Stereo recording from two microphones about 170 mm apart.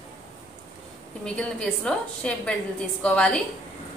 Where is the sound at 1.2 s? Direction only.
5° left (ahead or behind).